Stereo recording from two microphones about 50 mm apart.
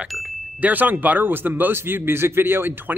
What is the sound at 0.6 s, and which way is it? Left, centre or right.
Speech, right.